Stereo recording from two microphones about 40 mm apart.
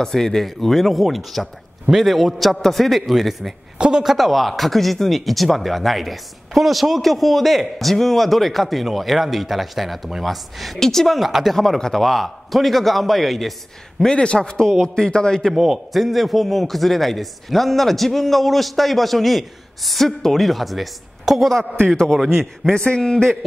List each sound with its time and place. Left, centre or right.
0.0 s speech: centre
3.7 s speech: centre
4.0 s speech: centre
10.8 s a man's voice: centre
11.1 s speech: centre
14.1 s a man's voice: left
15.5 s speech: centre
21.8 s speech: centre
22.7 s a man's voice: centre